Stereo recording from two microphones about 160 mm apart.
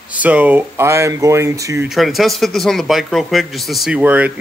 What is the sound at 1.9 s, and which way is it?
Speech, centre (ahead or behind).